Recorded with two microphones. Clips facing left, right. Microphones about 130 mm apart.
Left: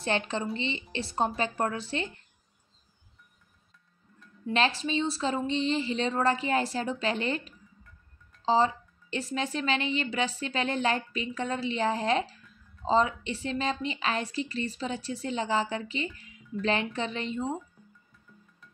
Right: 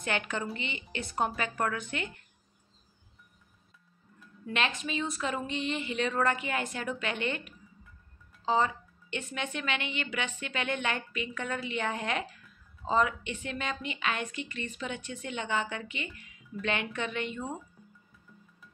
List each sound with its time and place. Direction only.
0.0 s a woman's voice: 30° left (ahead or behind)
4.5 s a woman's voice: 35° left (ahead or behind)